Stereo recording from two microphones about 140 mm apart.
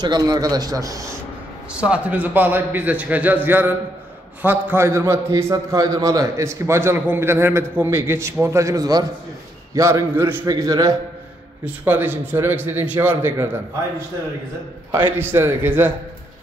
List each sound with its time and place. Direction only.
0.0 s a man's voice: 30° right (ahead or behind)
1.7 s a man's voice: 10° right (ahead or behind)
10.4 s a man's voice: 25° right (ahead or behind)
11.6 s a man's voice: 15° right (ahead or behind)
14.9 s a man's voice: 15° right (ahead or behind)